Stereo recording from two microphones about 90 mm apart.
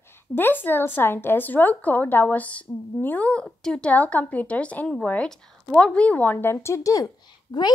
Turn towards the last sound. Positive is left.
turn(degrees=50)  # may be behind; listen again after turning